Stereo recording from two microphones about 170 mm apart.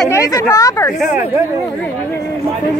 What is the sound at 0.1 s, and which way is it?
Speech, 20° left (ahead or behind).